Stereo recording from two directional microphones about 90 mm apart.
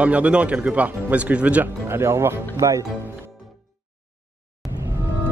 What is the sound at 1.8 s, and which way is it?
Speech, 30° right (ahead or behind).